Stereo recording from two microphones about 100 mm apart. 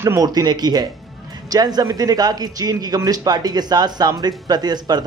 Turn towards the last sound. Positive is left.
turn(degrees=-45)  # may be behind; listen again after turning